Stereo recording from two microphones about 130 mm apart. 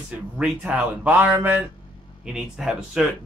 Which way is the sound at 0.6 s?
10° right (ahead or behind).